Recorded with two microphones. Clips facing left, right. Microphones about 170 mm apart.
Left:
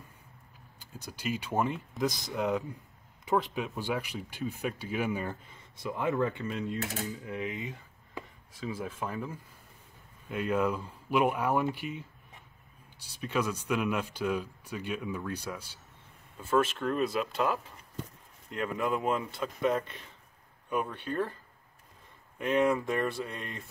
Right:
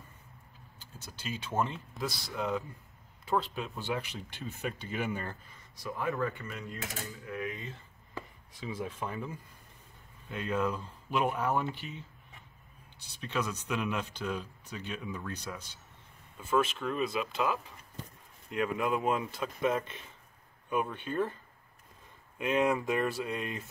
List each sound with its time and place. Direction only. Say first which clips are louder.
0.7 s speech: left 5 dB; 10° left (ahead or behind)
5.3 s speech: left 4 dB; 25° left (ahead or behind)
8.5 s speech: left 1 dB; 5° left (ahead or behind)
13.1 s speech: left 3 dB; 10° left (ahead or behind)
18.6 s speech: even; centre (ahead or behind)
22.4 s speech: left 2 dB; 5° right (ahead or behind)